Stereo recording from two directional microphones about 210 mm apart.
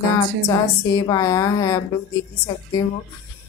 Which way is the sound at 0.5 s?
15° left (ahead or behind).